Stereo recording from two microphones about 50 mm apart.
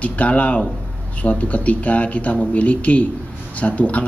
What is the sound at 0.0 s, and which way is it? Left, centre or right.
Speech, left.